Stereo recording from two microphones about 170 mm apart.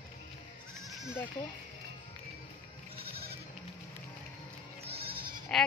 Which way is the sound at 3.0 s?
65° right (ahead or behind).